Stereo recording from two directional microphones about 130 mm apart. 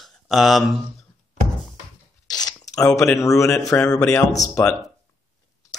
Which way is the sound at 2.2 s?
30° left (ahead or behind).